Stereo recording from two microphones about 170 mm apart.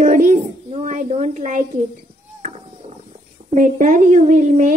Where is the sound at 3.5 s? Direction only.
50° right (ahead or behind).